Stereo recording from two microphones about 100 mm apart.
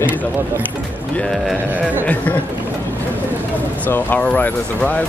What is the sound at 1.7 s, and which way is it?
Music, 15° right (ahead or behind).